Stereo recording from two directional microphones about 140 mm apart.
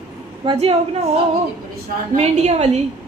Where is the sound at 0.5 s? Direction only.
45° right (ahead or behind).